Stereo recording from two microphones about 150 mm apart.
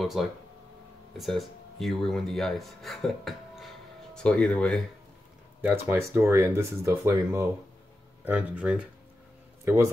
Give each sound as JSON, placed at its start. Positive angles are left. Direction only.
{"t": 0.0, "sound": "speech", "side_deg": 0}
{"t": 5.6, "sound": "speech", "side_deg": -10}